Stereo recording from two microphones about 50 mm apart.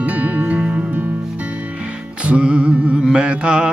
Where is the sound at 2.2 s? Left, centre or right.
Right.